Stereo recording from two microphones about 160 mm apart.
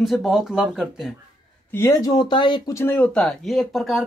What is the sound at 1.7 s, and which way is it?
Speech, 15° left (ahead or behind).